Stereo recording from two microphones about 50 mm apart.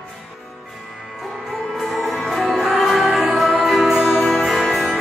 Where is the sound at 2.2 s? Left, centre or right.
Centre.